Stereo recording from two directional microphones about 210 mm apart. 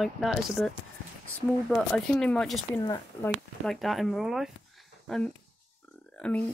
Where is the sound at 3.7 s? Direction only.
Centre (ahead or behind).